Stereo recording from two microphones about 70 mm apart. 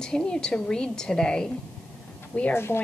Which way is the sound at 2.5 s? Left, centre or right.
Left.